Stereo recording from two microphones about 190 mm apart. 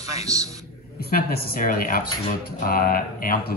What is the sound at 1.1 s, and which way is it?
Speech, 55° left (ahead or behind).